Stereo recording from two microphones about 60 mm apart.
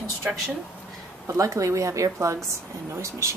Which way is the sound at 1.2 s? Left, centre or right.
Right.